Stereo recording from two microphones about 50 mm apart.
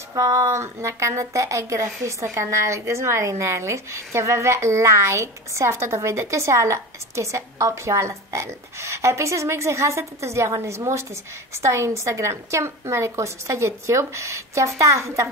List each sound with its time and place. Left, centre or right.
0.5 s a woman's voice: right
11.6 s a woman's voice: right